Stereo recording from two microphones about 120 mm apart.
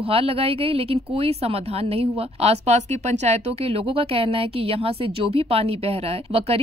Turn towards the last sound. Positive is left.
turn(degrees=-55)  # may be behind; listen again after turning